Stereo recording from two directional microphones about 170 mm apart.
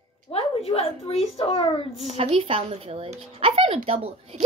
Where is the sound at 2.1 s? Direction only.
35° right (ahead or behind).